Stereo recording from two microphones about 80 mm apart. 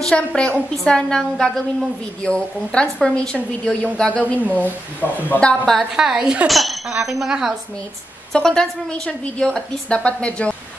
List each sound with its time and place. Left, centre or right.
0.0 s a woman's voice: centre
5.5 s speech: centre
5.9 s speech: centre
8.3 s a woman's voice: centre